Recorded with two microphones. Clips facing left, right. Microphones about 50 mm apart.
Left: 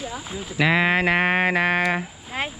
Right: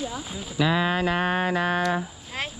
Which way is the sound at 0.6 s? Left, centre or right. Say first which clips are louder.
Left 4 dB; left.